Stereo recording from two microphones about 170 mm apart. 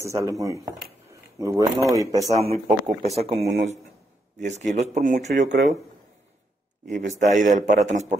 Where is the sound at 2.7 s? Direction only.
Centre (ahead or behind).